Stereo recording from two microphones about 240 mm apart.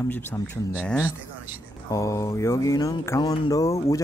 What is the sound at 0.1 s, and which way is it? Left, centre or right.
Speech, centre.